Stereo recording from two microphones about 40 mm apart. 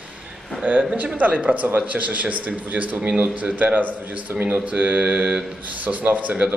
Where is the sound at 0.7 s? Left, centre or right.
Right.